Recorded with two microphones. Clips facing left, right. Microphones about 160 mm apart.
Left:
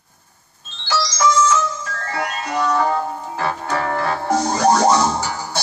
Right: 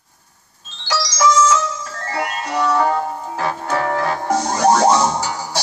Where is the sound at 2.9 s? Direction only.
10° right (ahead or behind).